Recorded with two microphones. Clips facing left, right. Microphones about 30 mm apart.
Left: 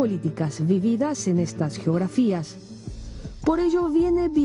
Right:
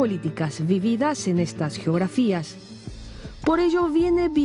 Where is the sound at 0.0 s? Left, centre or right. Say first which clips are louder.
Even; right.